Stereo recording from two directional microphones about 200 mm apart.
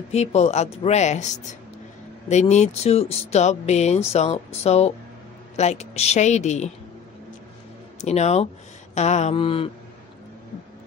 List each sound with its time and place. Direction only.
0.1 s speech: 35° left (ahead or behind)
8.0 s speech: 35° left (ahead or behind)